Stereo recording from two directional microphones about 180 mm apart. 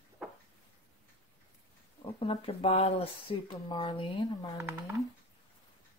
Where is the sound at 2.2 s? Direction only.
35° left (ahead or behind).